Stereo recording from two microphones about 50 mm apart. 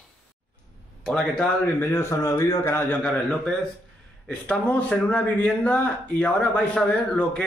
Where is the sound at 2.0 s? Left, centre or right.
Left.